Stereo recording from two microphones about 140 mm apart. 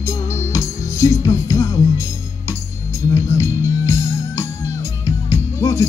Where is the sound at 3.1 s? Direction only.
20° left (ahead or behind).